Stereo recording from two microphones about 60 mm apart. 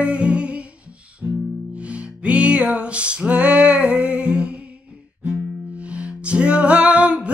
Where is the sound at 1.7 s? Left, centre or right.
Right.